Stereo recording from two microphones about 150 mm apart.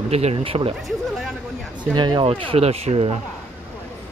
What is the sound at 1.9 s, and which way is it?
Speech, 30° right (ahead or behind).